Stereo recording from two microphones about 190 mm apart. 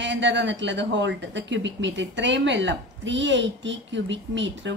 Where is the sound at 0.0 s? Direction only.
70° right (ahead or behind).